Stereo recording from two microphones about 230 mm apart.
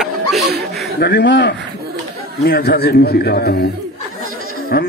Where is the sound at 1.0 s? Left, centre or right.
Left.